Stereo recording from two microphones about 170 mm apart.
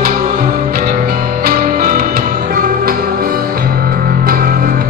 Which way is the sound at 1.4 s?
55° right (ahead or behind).